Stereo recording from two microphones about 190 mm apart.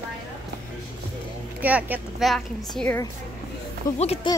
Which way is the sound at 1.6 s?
10° right (ahead or behind).